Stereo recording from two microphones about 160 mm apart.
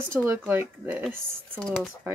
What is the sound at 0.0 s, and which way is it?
Speech, 15° right (ahead or behind).